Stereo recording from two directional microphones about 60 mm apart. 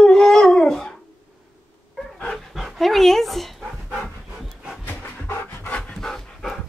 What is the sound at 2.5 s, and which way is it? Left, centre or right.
Dog, centre.